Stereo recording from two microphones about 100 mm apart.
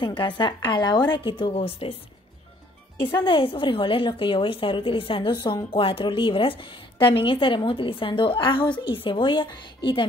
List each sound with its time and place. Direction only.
0.0 s a woman's voice: 50° left (ahead or behind); by 2.0 s 65° left (ahead or behind)
3.2 s a woman's voice: 55° left (ahead or behind)
5.7 s a woman's voice: 60° left (ahead or behind)